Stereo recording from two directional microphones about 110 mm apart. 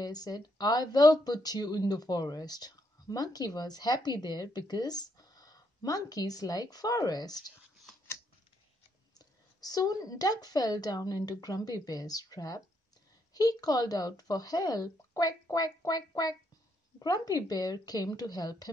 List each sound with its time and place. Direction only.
0.0 s speech: 35° left (ahead or behind)
9.2 s speech: 35° left (ahead or behind)